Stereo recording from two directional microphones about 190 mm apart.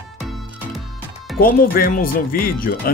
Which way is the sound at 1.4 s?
50° left (ahead or behind).